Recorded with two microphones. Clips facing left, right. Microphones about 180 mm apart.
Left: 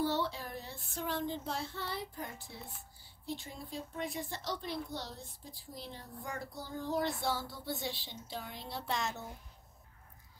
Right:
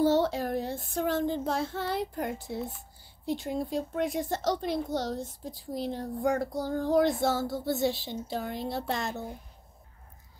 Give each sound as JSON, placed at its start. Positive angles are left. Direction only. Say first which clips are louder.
{"t": 0.0, "sound": "a sound", "louder": "right 10 dB", "side_deg": -90}
{"t": 1.1, "sound": "a woman's voice", "louder": "right 6 dB", "side_deg": -50}
{"t": 1.7, "sound": "speech", "louder": "right 10 dB", "side_deg": -90}
{"t": 7.2, "sound": "a woman's voice", "louder": "right 9 dB", "side_deg": -45}
{"t": 9.0, "sound": "a woman's voice", "louder": "right 5 dB", "side_deg": -55}